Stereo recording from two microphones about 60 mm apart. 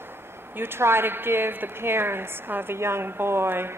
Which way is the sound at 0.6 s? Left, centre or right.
Right.